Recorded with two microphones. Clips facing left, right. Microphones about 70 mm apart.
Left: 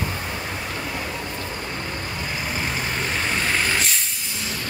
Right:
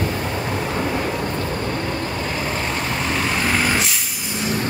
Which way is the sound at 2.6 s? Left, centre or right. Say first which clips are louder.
Right 3 dB; centre.